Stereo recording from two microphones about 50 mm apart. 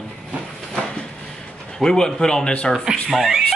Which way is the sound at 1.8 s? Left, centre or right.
Centre.